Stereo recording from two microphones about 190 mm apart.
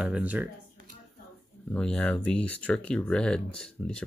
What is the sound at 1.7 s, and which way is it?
Speech, 5° left (ahead or behind).